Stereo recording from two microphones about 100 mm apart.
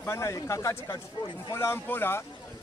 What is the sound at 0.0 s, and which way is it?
Speech, 30° left (ahead or behind).